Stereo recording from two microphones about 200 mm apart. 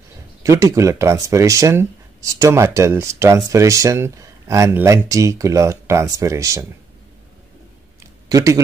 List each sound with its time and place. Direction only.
0.4 s speech: 15° right (ahead or behind)
8.3 s speech: 15° right (ahead or behind)